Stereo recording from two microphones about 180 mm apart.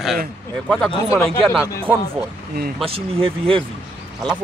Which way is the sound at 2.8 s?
30° right (ahead or behind).